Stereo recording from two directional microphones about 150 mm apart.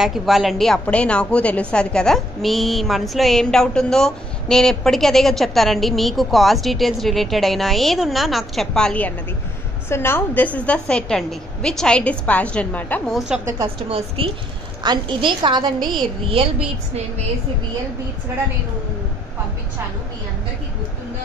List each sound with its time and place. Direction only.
0.0 s a woman's voice: centre (ahead or behind)
13.1 s a woman's voice: 5° right (ahead or behind)
13.6 s a woman's voice: 40° right (ahead or behind)